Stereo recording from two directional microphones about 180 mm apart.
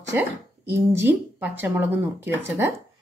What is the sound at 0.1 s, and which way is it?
Speech, 10° right (ahead or behind).